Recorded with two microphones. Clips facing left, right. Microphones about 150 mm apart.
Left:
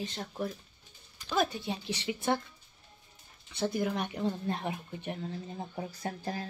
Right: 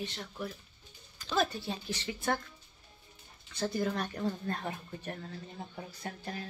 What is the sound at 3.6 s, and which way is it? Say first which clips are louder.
Speech: left 1 dB; 10° left (ahead or behind).